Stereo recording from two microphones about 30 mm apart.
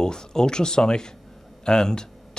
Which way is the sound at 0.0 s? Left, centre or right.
Left.